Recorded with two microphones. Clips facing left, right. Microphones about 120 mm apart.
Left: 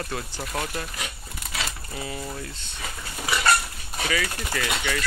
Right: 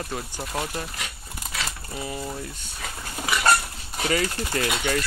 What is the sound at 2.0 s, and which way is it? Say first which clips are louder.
Speech: right 1 dB; 20° right (ahead or behind).